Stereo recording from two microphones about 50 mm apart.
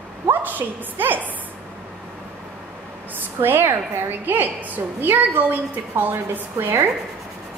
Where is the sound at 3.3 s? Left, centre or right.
Right.